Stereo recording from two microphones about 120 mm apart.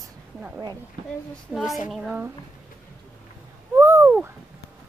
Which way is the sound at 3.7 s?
20° right (ahead or behind).